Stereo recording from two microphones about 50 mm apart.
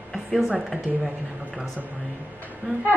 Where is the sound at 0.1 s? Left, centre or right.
Centre.